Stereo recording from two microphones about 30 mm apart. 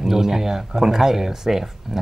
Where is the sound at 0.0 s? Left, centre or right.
Centre.